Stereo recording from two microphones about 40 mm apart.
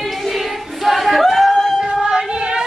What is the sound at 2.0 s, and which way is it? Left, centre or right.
Child singing, centre.